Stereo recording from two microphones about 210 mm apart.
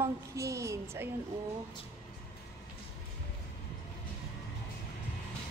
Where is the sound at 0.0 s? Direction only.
15° right (ahead or behind).